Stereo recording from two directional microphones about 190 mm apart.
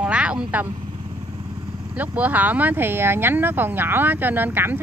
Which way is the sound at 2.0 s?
10° right (ahead or behind).